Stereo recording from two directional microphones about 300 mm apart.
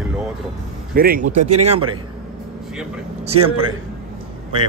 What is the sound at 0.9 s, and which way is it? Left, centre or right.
Mantra, right.